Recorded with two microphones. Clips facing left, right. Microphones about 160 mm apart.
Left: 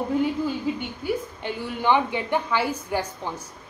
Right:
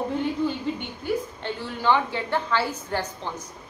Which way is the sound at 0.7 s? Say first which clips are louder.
Left 1 dB; 5° left (ahead or behind).